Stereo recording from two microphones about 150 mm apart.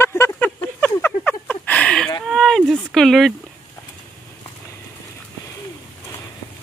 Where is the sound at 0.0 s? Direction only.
15° left (ahead or behind).